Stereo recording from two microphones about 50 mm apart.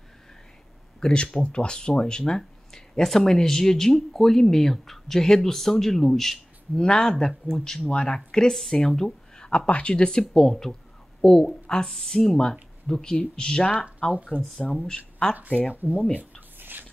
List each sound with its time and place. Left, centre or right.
1.0 s speech: centre
8.9 s a sound: centre
9.7 s speech: left
14.6 s speech: left
14.9 s speech: centre
15.9 s speech: left
16.2 s a sound: right